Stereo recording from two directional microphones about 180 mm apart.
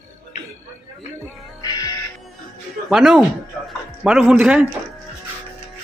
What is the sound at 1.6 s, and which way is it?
Music, 20° left (ahead or behind).